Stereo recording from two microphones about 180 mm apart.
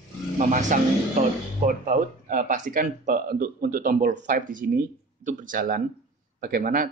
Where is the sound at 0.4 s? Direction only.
45° right (ahead or behind).